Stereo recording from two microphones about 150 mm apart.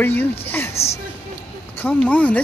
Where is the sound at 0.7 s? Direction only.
45° left (ahead or behind).